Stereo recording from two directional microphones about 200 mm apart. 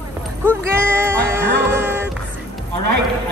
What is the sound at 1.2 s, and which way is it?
Music, 10° right (ahead or behind).